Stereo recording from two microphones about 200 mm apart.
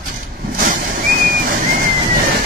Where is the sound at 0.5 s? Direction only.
45° right (ahead or behind).